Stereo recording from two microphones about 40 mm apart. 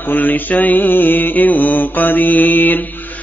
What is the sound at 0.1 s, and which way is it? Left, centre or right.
Music, left.